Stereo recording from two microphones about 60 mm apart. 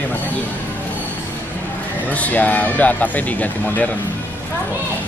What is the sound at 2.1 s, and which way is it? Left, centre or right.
Speech, left.